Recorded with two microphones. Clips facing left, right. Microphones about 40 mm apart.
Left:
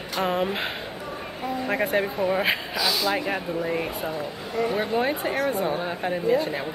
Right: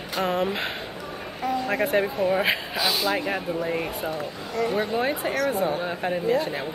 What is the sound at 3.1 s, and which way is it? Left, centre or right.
Speech, centre.